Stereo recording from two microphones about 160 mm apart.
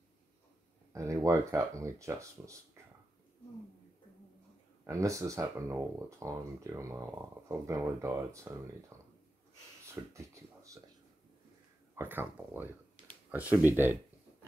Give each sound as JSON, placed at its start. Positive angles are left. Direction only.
{"t": 0.9, "sound": "speech", "side_deg": -20}
{"t": 4.8, "sound": "speech", "side_deg": -20}
{"t": 10.1, "sound": "speech", "side_deg": -20}
{"t": 11.9, "sound": "speech", "side_deg": -10}